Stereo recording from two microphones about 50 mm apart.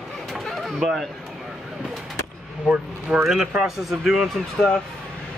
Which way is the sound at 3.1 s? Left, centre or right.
Right.